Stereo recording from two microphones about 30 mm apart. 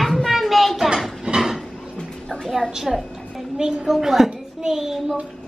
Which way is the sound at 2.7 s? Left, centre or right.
Centre.